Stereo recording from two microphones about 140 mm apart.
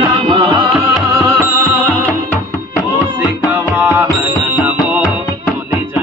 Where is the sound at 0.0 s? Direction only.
35° right (ahead or behind).